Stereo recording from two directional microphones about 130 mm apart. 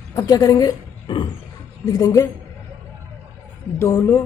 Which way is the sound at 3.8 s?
20° left (ahead or behind).